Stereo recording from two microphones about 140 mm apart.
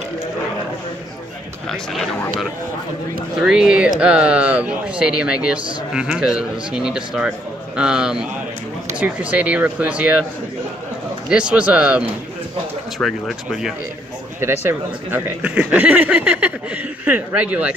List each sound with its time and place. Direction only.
3.3 s a man's voice: 5° right (ahead or behind)
11.2 s speech: 5° right (ahead or behind)
13.0 s a man's voice: 5° right (ahead or behind)
14.4 s speech: 20° right (ahead or behind)